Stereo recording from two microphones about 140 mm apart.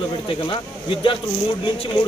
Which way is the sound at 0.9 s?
40° left (ahead or behind).